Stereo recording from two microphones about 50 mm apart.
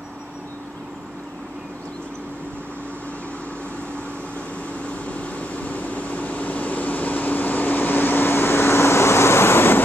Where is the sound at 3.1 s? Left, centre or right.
Left.